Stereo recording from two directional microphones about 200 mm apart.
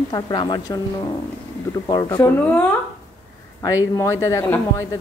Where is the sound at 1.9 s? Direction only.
20° left (ahead or behind).